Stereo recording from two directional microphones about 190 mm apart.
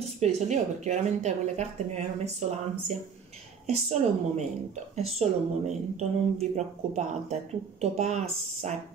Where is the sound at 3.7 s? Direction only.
35° right (ahead or behind).